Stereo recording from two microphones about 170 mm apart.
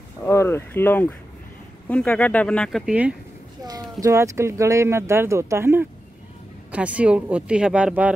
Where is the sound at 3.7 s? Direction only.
20° right (ahead or behind).